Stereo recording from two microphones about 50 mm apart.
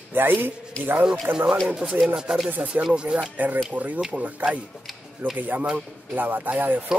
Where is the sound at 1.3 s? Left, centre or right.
Right.